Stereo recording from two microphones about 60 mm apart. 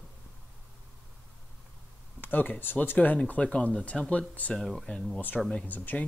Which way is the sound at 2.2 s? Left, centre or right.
Left.